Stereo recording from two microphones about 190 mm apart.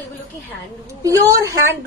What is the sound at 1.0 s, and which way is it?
Speech, 15° right (ahead or behind).